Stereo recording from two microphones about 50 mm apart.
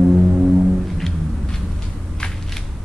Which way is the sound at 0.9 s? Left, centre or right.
Centre.